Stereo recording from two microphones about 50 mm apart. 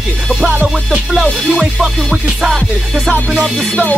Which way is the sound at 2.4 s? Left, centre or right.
Centre.